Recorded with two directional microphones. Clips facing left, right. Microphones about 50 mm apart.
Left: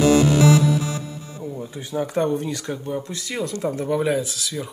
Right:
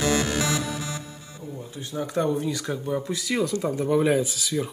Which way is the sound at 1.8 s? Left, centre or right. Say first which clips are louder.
Left 3 dB; left.